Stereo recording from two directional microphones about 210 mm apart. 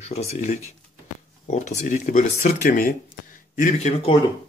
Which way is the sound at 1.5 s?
35° left (ahead or behind).